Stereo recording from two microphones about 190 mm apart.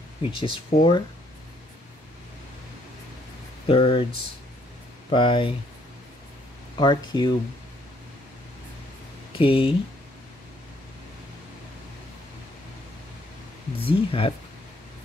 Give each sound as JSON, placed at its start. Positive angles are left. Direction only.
{"t": 0.2, "sound": "speech", "side_deg": 25}
{"t": 0.7, "sound": "speech", "side_deg": 50}
{"t": 3.6, "sound": "speech", "side_deg": 30}
{"t": 5.1, "sound": "speech", "side_deg": 25}
{"t": 6.8, "sound": "speech", "side_deg": 25}
{"t": 9.4, "sound": "speech", "side_deg": 30}
{"t": 13.7, "sound": "speech", "side_deg": 30}